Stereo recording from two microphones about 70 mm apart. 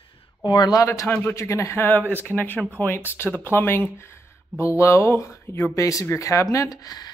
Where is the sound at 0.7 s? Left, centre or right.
Left.